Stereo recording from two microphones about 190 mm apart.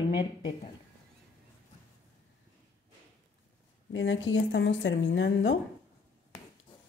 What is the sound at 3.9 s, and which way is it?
Speech, 75° left (ahead or behind).